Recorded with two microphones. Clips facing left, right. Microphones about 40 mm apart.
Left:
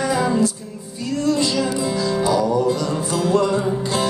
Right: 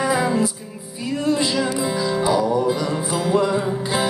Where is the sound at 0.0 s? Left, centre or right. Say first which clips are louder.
Left 1 dB; centre.